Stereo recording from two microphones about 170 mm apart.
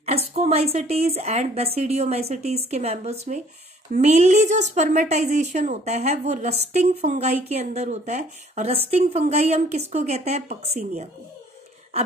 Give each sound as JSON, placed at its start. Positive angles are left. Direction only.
{"t": 0.0, "sound": "a woman's voice", "side_deg": -35}